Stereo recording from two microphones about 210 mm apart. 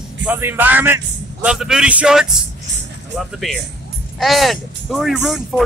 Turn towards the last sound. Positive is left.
turn(degrees=0)  # may be behind; listen again after turning